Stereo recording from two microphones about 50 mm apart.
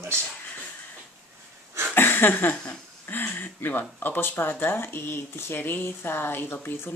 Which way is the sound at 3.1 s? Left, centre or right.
Left.